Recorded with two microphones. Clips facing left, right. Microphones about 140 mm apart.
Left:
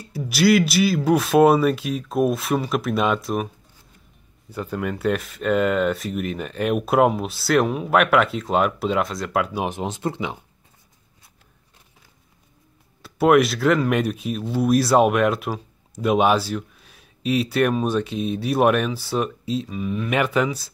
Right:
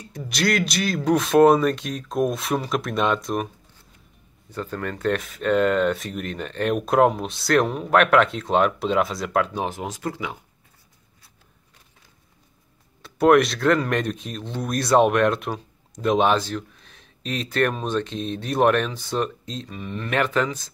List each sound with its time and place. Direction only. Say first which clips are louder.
0.0 s speech: left 6 dB; 5° left (ahead or behind)
4.5 s speech: left 3 dB; 10° left (ahead or behind)
9.7 s speech: left 3 dB; 25° left (ahead or behind)
13.0 s speech: even; 5° left (ahead or behind)